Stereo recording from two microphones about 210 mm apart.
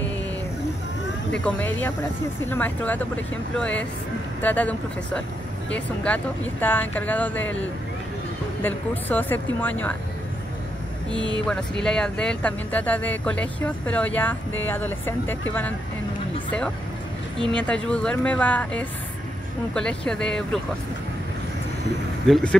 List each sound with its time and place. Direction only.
1.4 s speech: 5° left (ahead or behind)
8.6 s speech: 10° left (ahead or behind)
11.1 s speech: 20° right (ahead or behind)
11.8 s speech: 5° left (ahead or behind)
17.6 s speech: 5° left (ahead or behind)
22.3 s speech: 5° left (ahead or behind)